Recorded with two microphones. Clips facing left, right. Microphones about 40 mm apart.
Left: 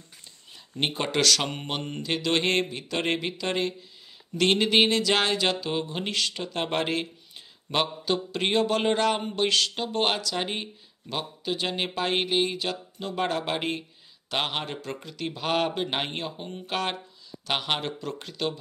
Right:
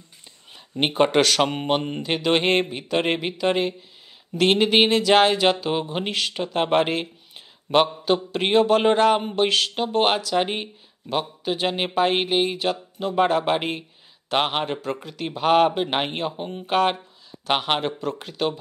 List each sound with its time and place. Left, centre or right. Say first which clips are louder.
0.7 s speech: right 8 dB; right